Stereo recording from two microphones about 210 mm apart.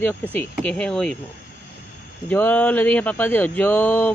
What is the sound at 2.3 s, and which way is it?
Speech, 10° left (ahead or behind).